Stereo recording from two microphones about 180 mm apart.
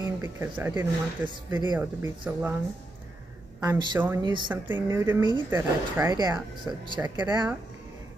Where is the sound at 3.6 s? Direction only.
25° right (ahead or behind).